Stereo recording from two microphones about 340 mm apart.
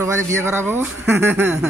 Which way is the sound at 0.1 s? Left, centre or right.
Centre.